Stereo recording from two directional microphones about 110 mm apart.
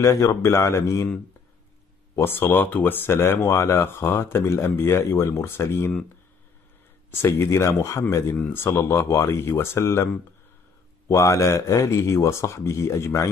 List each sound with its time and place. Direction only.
0.0 s speech: 30° left (ahead or behind)
2.1 s speech: 20° left (ahead or behind)
7.2 s speech: 25° left (ahead or behind)
8.4 s speech: 15° left (ahead or behind)
11.1 s speech: 30° left (ahead or behind)